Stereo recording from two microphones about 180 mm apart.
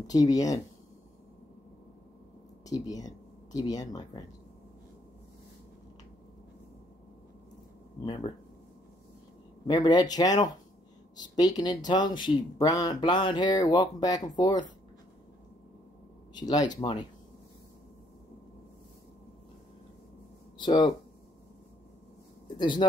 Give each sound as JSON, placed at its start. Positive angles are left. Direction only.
{"t": 0.0, "sound": "speech", "side_deg": 20}
{"t": 2.6, "sound": "speech", "side_deg": 20}
{"t": 8.0, "sound": "speech", "side_deg": 25}
{"t": 9.7, "sound": "speech", "side_deg": 25}
{"t": 16.3, "sound": "speech", "side_deg": 20}
{"t": 20.5, "sound": "speech", "side_deg": 25}
{"t": 22.6, "sound": "speech", "side_deg": 25}